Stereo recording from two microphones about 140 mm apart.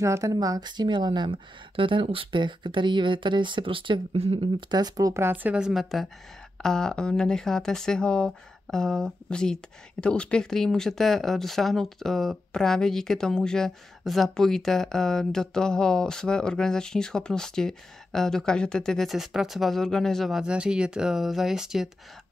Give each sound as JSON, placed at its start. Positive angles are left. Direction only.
{"t": 0.0, "sound": "speech", "side_deg": -25}